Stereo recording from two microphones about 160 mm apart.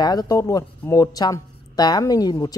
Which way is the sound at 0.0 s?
25° left (ahead or behind).